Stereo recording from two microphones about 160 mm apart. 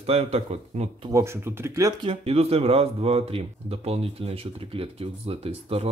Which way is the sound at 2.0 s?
40° right (ahead or behind).